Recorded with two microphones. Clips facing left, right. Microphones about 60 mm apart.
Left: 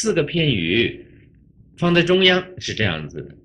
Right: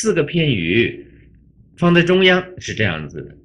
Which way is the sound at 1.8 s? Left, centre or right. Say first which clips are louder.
Right 3 dB; right.